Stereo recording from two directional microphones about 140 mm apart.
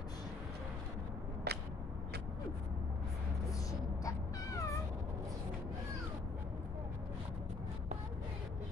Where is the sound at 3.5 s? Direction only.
25° left (ahead or behind).